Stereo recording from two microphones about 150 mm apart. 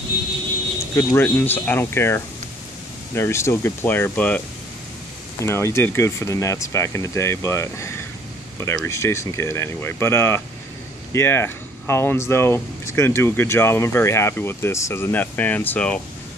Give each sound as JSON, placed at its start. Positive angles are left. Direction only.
{"t": 0.9, "sound": "speech", "side_deg": 10}
{"t": 5.4, "sound": "speech", "side_deg": 20}